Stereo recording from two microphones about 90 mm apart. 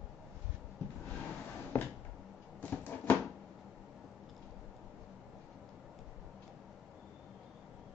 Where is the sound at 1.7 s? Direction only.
35° left (ahead or behind).